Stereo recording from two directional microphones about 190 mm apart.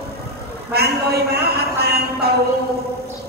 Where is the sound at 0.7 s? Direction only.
55° right (ahead or behind).